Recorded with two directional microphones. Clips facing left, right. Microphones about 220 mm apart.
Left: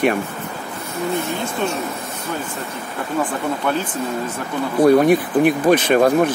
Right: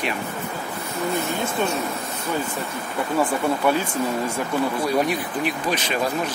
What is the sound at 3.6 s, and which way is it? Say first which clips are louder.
Speech: right 1 dB; 10° right (ahead or behind).